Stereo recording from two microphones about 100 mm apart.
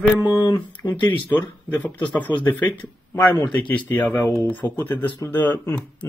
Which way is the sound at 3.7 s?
20° left (ahead or behind).